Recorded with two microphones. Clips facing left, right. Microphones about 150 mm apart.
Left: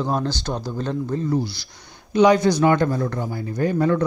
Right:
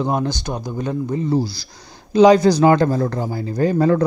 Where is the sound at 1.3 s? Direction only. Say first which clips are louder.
Right 3 dB; 35° right (ahead or behind).